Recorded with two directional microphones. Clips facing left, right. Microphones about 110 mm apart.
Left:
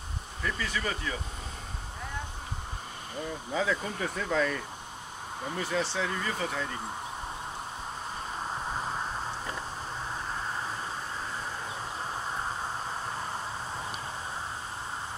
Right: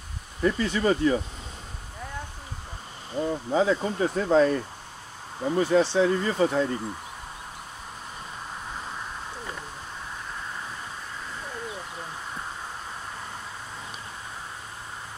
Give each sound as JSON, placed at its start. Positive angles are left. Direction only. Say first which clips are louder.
{"t": 0.4, "sound": "speech", "louder": "right 9 dB", "side_deg": -30}
{"t": 3.2, "sound": "speech", "louder": "right 8 dB", "side_deg": -30}